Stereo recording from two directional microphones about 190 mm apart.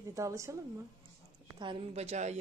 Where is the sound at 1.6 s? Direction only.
30° right (ahead or behind).